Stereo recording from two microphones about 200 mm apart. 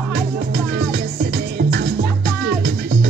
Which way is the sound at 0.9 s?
50° right (ahead or behind).